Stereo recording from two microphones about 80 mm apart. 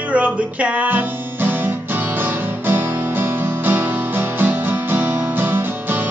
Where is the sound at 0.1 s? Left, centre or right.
Centre.